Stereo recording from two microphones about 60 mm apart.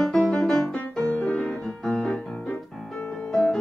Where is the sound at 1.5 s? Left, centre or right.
Centre.